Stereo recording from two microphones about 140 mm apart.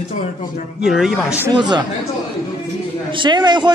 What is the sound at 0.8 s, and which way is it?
Speech, 5° right (ahead or behind).